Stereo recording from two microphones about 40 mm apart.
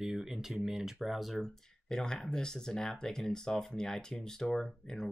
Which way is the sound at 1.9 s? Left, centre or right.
Centre.